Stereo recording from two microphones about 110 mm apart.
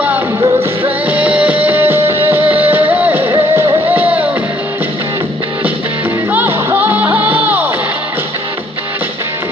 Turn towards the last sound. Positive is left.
turn(degrees=-15)  # may be behind; listen again after turning